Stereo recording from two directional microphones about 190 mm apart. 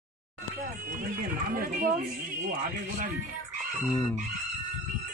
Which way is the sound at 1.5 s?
45° right (ahead or behind).